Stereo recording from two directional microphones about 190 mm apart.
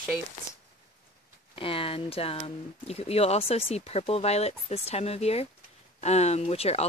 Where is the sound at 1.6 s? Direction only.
30° left (ahead or behind).